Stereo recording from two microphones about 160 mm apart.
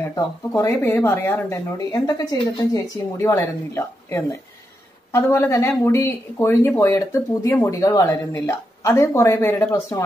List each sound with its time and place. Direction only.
0.1 s speech: 20° left (ahead or behind)